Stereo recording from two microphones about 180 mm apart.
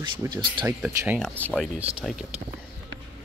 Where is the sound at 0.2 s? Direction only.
20° right (ahead or behind); by 2.2 s centre (ahead or behind).